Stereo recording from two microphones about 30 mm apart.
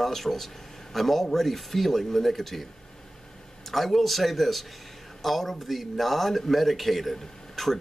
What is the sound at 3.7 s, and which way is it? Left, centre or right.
Speech, centre.